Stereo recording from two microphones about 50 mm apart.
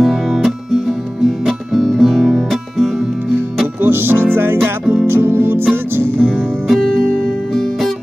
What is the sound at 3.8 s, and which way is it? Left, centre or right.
Music, right.